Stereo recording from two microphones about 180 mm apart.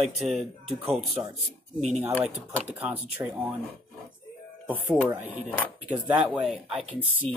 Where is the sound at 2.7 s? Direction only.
10° right (ahead or behind).